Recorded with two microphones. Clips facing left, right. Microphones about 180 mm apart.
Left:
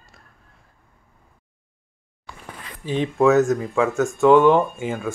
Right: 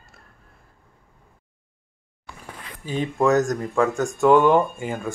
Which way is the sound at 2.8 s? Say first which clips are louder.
Left 3 dB; centre (ahead or behind).